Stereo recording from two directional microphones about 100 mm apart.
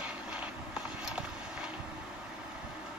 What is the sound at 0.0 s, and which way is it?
Vehicle, 10° right (ahead or behind).